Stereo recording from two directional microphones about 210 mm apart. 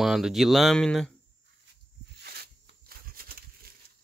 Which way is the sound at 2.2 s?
50° right (ahead or behind).